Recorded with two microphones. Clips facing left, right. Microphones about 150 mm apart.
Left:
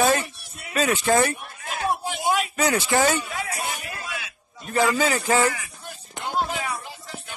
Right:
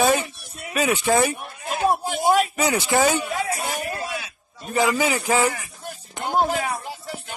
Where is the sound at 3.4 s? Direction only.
35° right (ahead or behind).